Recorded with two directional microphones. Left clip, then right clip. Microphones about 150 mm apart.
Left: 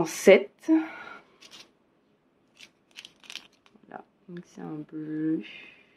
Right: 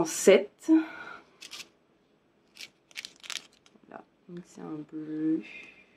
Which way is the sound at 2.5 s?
30° right (ahead or behind).